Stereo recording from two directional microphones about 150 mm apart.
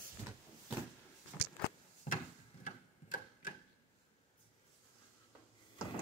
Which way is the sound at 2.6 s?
60° left (ahead or behind).